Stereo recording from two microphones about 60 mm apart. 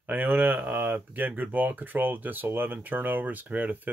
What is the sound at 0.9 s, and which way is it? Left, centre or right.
Speech, right.